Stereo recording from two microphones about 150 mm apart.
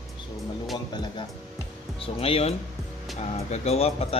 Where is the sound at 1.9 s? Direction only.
40° left (ahead or behind).